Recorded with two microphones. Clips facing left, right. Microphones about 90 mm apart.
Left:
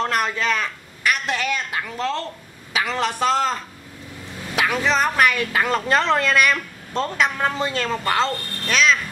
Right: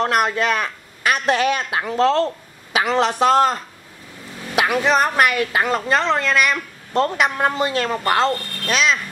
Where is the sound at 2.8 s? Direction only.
25° right (ahead or behind).